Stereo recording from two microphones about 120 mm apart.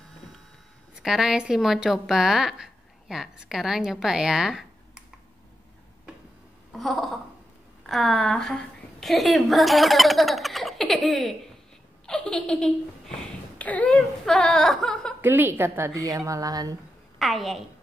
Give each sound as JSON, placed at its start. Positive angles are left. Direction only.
{"t": 1.0, "sound": "speech", "side_deg": -5}
{"t": 6.7, "sound": "speech", "side_deg": 0}
{"t": 15.2, "sound": "a woman's voice", "side_deg": -20}
{"t": 17.2, "sound": "speech", "side_deg": 0}